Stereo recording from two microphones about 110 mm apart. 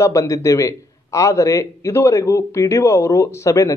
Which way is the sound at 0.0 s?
30° left (ahead or behind).